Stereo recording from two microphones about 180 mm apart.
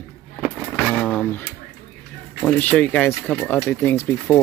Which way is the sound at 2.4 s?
10° left (ahead or behind).